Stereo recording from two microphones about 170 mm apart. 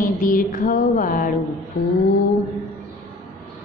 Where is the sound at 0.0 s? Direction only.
55° left (ahead or behind).